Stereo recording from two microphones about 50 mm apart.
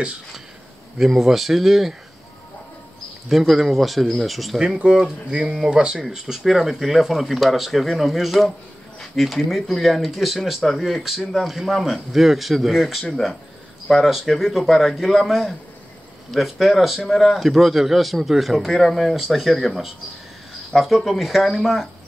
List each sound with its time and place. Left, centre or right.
0.9 s speech: centre
3.3 s speech: centre
4.7 s speech: centre